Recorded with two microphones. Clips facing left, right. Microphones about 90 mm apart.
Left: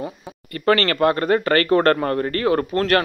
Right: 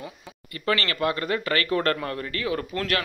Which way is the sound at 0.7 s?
50° left (ahead or behind).